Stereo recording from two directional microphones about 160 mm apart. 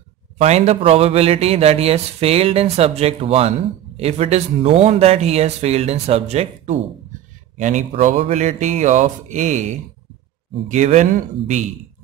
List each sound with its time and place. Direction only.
0.4 s speech: 40° right (ahead or behind)